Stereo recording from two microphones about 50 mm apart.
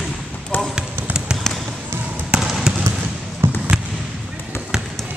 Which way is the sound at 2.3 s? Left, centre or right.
Centre.